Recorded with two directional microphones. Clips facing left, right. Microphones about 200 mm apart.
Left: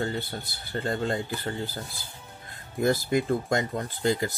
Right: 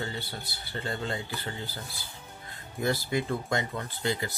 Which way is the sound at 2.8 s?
45° left (ahead or behind).